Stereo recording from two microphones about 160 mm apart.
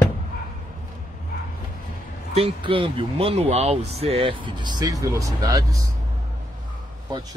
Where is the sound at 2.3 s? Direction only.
35° right (ahead or behind).